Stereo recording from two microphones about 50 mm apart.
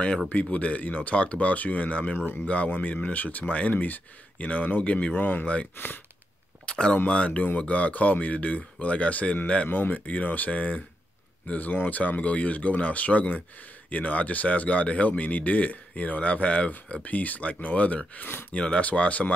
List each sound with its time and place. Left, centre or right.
0.3 s speech: left
5.1 s speech: left
5.8 s speech: left
6.6 s a sound: centre
7.1 s speech: left
9.7 s speech: left